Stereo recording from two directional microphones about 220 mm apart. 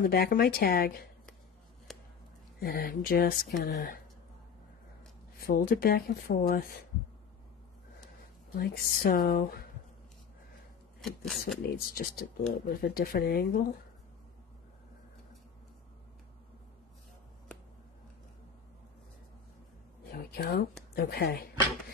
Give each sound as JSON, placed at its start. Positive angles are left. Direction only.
{"t": 0.0, "sound": "speech", "side_deg": 45}
{"t": 1.9, "sound": "a sound", "side_deg": 0}
{"t": 2.6, "sound": "speech", "side_deg": 40}
{"t": 5.4, "sound": "speech", "side_deg": 40}
{"t": 8.5, "sound": "speech", "side_deg": 45}
{"t": 11.0, "sound": "speech", "side_deg": 0}
{"t": 11.7, "sound": "speech", "side_deg": 45}
{"t": 20.1, "sound": "a sound", "side_deg": 45}
{"t": 20.9, "sound": "speech", "side_deg": 45}